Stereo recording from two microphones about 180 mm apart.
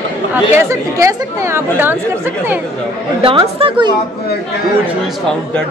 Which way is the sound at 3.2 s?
30° right (ahead or behind).